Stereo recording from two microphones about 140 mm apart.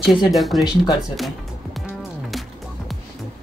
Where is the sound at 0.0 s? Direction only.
Centre (ahead or behind).